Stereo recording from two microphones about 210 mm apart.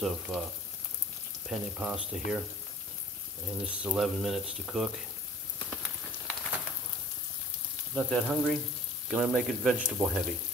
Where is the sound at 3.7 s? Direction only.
5° right (ahead or behind).